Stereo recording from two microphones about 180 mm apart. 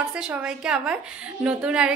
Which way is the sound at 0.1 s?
5° right (ahead or behind).